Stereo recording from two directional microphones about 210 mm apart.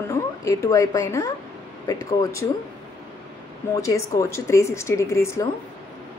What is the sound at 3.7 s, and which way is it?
A woman's voice, 15° left (ahead or behind).